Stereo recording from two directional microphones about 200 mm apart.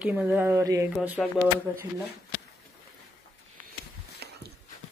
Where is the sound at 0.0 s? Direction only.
5° right (ahead or behind).